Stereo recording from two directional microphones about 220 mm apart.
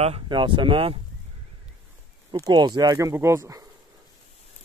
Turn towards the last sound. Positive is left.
turn(degrees=-15)  # may be behind; listen again after turning